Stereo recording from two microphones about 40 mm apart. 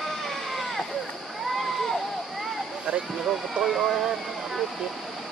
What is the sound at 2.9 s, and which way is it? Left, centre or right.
Speech, right.